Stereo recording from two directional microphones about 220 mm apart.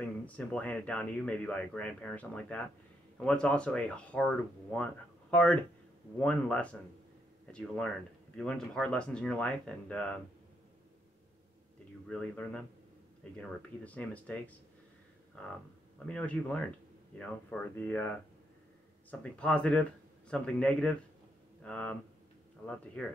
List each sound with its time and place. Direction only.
0.0 s speech: 5° left (ahead or behind)
12.1 s speech: 5° left (ahead or behind)
16.1 s speech: 5° left (ahead or behind)